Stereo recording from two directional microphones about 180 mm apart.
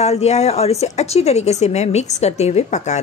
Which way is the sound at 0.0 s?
35° left (ahead or behind).